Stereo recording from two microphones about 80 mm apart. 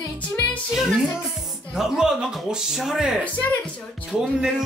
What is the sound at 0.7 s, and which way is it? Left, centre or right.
Music, centre.